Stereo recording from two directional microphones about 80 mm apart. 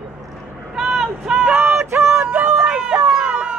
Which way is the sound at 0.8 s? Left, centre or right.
Centre.